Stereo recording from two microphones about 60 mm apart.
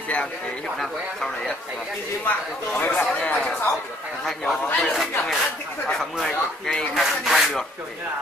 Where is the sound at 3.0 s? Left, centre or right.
Centre.